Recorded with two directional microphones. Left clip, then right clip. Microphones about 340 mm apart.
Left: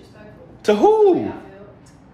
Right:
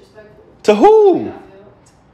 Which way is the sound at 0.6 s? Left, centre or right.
Centre.